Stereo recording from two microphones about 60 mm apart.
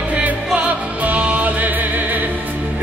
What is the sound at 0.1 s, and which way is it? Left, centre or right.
Music, right.